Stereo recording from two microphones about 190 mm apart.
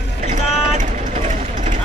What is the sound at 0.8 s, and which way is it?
Vehicle, 40° right (ahead or behind).